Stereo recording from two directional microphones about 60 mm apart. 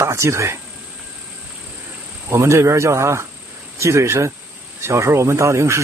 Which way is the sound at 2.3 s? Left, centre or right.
Right.